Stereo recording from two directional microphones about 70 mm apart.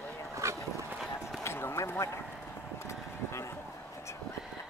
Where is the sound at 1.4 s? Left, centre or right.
Left.